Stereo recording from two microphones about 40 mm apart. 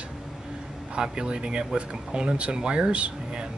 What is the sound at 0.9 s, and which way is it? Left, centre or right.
Speech, right.